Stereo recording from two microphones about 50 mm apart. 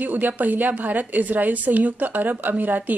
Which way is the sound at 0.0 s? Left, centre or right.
Right.